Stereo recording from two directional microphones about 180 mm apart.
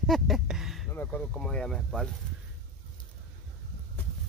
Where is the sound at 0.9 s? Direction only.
10° left (ahead or behind).